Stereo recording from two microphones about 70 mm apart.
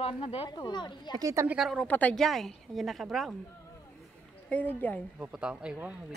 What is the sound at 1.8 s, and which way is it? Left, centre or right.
Speech, left.